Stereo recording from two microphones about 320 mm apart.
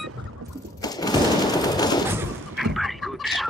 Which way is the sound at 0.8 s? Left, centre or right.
Centre.